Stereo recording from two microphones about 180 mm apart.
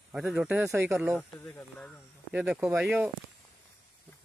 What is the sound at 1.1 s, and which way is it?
Speech, 5° left (ahead or behind).